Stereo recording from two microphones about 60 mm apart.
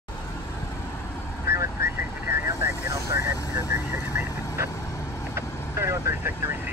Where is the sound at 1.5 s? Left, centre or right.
Right.